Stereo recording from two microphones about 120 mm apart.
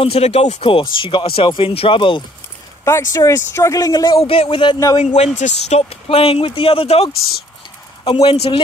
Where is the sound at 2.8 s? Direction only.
25° left (ahead or behind).